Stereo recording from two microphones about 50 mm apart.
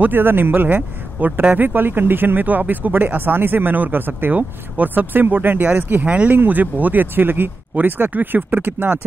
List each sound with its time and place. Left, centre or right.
0.0 s speech: right
6.0 s speech: right
6.3 s speech: right